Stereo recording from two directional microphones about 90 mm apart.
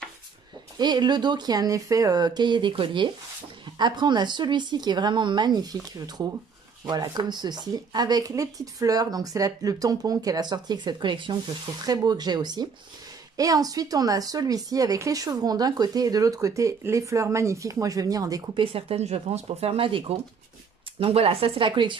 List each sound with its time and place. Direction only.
0.7 s speech: 55° right (ahead or behind); by 3.1 s 70° right (ahead or behind)
3.6 s speech: 55° right (ahead or behind)
11.8 s speech: 45° right (ahead or behind)
13.4 s speech: 40° right (ahead or behind)
18.5 s speech: 85° right; by 21.9 s 65° right (ahead or behind)